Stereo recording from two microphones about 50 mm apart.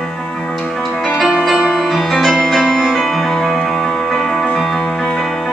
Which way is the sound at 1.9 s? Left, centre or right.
Centre.